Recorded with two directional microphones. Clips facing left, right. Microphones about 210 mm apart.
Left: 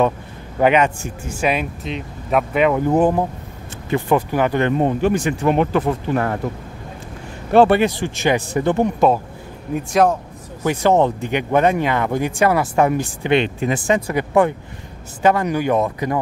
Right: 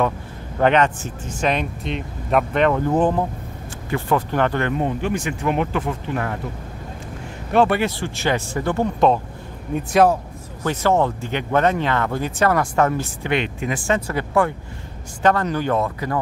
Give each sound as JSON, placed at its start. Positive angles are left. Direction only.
{"t": 0.6, "sound": "speech", "side_deg": 10}
{"t": 3.9, "sound": "speech", "side_deg": 20}
{"t": 4.3, "sound": "speech", "side_deg": 10}
{"t": 4.7, "sound": "speech", "side_deg": 40}
{"t": 7.5, "sound": "speech", "side_deg": 30}
{"t": 7.8, "sound": "speech", "side_deg": 15}
{"t": 9.8, "sound": "speech", "side_deg": 0}
{"t": 10.6, "sound": "speech", "side_deg": 15}
{"t": 13.3, "sound": "speech", "side_deg": 30}
{"t": 13.8, "sound": "speech", "side_deg": 15}